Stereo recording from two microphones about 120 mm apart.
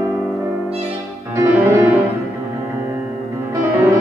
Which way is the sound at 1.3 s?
25° right (ahead or behind).